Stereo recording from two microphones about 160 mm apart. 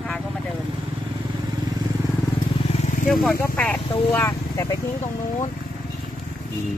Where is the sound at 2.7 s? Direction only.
50° left (ahead or behind).